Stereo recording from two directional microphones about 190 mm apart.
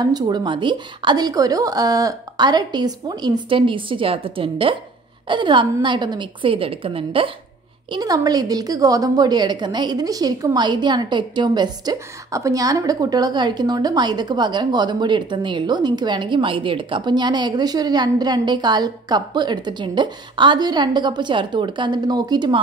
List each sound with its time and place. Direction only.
0.0 s a woman's voice: 20° right (ahead or behind)